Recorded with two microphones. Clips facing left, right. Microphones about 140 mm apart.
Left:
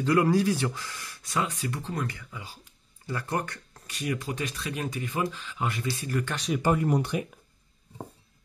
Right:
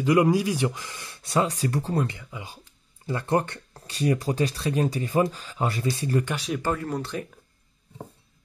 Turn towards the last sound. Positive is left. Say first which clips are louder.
# left 4 dB
turn(degrees=15)  # may be behind; listen again after turning